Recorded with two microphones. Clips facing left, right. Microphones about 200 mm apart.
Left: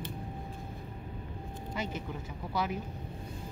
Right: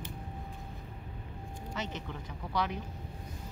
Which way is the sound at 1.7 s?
10° left (ahead or behind).